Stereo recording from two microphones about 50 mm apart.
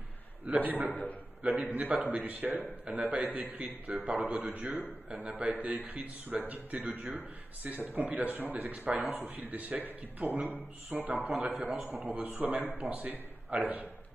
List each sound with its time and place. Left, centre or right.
0.5 s a man's voice: right